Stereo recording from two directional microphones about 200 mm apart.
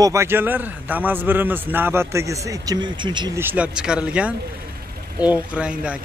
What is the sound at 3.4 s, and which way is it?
Speech, 10° right (ahead or behind).